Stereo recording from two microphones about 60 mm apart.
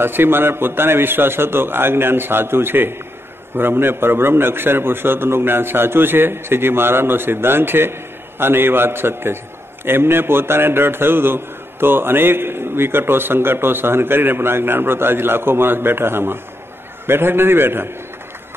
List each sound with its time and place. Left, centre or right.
0.0 s a man's voice: right